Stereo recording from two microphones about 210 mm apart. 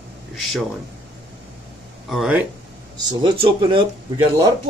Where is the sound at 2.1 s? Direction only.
5° right (ahead or behind).